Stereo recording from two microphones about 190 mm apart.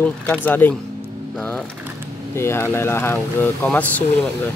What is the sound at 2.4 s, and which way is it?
Speech, 15° left (ahead or behind).